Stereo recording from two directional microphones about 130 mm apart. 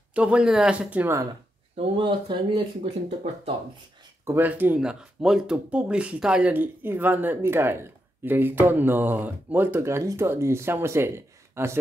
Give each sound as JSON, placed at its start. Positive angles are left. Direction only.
{"t": 0.1, "sound": "speech", "side_deg": -10}
{"t": 2.0, "sound": "speech", "side_deg": -40}
{"t": 4.2, "sound": "speech", "side_deg": -15}